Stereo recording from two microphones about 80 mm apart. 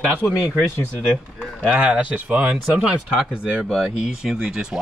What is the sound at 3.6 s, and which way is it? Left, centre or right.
Speech, centre.